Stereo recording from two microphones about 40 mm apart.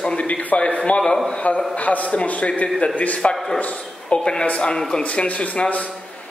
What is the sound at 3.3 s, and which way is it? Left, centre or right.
Speech, centre.